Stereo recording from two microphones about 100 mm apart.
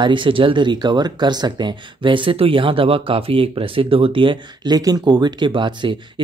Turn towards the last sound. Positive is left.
turn(degrees=-55)  # may be behind; listen again after turning